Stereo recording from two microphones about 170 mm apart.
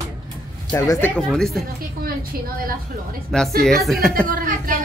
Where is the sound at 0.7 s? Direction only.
10° left (ahead or behind).